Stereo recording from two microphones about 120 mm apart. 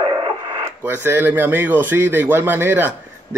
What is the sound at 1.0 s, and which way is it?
Speech, 15° right (ahead or behind).